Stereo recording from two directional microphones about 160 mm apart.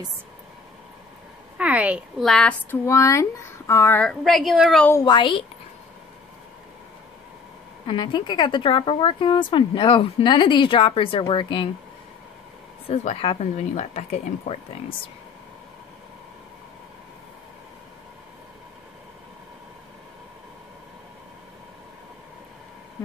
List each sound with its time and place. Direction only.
1.6 s a woman's voice: 10° right (ahead or behind)
2.2 s a woman's voice: 5° left (ahead or behind)
2.8 s a woman's voice: 20° left (ahead or behind); by 4.8 s centre (ahead or behind)
5.0 s a woman's voice: 30° left (ahead or behind)
7.8 s speech: 30° left (ahead or behind)
12.9 s speech: 40° left (ahead or behind)